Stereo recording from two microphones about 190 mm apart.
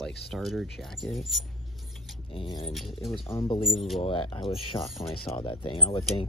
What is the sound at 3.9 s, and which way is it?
Speech, 30° left (ahead or behind).